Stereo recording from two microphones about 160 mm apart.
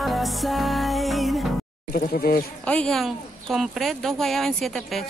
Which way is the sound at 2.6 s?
5° left (ahead or behind).